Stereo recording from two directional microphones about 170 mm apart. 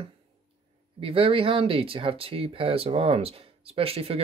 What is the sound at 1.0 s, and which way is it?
Speech, 35° right (ahead or behind).